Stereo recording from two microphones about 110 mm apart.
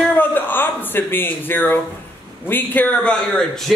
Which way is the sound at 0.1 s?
15° left (ahead or behind).